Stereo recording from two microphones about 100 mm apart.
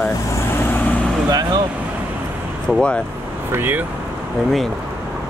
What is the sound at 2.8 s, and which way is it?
Speech, 10° left (ahead or behind).